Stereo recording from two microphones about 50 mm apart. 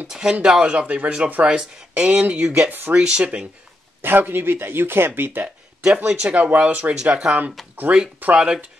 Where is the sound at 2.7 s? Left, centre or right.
Right.